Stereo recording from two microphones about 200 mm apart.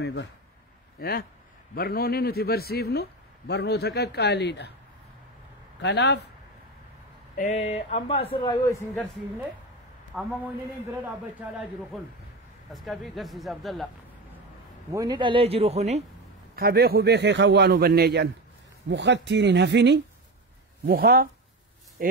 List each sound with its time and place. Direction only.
0.0 s a man's voice: 60° left (ahead or behind)
0.9 s a man's voice: 50° left (ahead or behind)
5.8 s a man's voice: 60° left (ahead or behind)
7.3 s a man's voice: 35° left (ahead or behind); by 8.8 s 15° left (ahead or behind)
10.1 s speech: 5° right (ahead or behind)
11.3 s speech: 5° right (ahead or behind)
14.9 s a man's voice: 20° right (ahead or behind)
16.5 s a man's voice: 50° right (ahead or behind)
20.8 s a man's voice: 50° right (ahead or behind)